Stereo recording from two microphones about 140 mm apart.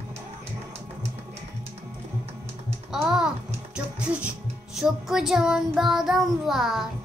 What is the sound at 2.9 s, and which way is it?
Typing, 5° right (ahead or behind).